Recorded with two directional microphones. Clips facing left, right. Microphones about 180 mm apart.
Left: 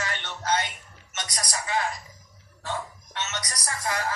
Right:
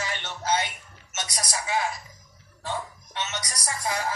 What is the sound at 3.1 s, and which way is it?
Speech, 10° right (ahead or behind).